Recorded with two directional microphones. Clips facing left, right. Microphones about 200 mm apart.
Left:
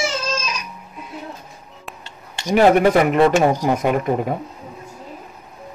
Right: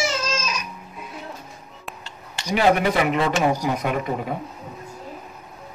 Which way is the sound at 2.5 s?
50° left (ahead or behind).